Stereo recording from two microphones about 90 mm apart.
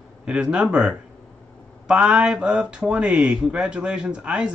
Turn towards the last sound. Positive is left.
turn(degrees=-10)  # may be behind; listen again after turning